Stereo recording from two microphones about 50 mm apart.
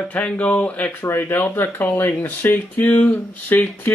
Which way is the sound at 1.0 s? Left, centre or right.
Left.